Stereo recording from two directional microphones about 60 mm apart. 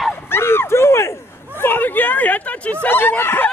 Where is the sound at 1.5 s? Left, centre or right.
Left.